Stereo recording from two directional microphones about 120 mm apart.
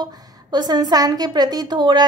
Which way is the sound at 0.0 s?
35° right (ahead or behind).